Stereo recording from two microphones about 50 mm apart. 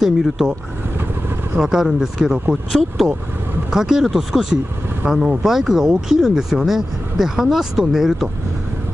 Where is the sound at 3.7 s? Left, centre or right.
Centre.